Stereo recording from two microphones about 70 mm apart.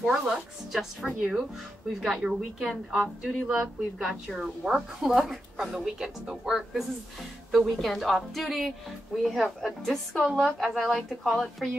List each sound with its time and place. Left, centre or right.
0.0 s a woman's voice: centre